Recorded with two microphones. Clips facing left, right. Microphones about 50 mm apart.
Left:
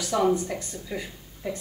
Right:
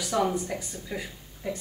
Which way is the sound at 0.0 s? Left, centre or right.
Centre.